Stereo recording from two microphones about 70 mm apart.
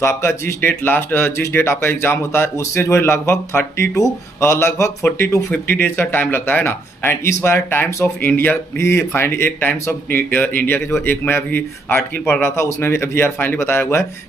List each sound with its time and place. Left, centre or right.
0.0 s speech: left
5.5 s speech: left